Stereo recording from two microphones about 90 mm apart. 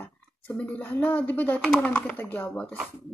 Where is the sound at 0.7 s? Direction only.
20° left (ahead or behind).